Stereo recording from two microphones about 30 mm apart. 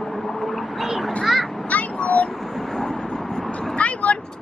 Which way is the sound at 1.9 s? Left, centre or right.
Left.